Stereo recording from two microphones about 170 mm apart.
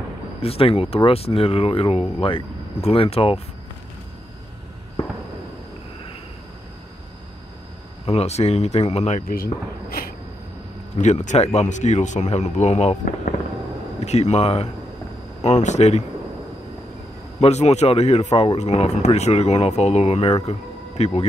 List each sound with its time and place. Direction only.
0.4 s speech: 35° left (ahead or behind)
8.0 s speech: 35° left (ahead or behind)
11.0 s speech: 45° left (ahead or behind)
17.4 s speech: 40° left (ahead or behind)